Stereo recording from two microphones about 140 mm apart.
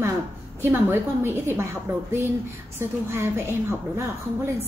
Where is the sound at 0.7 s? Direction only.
15° right (ahead or behind).